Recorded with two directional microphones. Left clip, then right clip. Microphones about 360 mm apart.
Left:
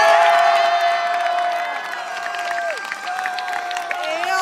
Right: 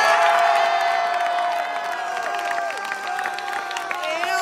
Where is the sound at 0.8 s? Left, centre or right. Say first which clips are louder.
Left 2 dB; right.